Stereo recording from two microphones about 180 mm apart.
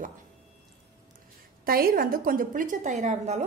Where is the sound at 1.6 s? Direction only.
55° right (ahead or behind).